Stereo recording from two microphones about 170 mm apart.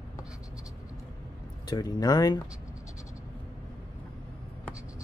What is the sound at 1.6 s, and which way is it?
Speech, 20° left (ahead or behind).